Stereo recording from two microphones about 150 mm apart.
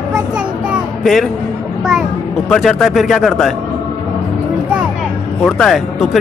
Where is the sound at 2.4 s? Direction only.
Centre (ahead or behind).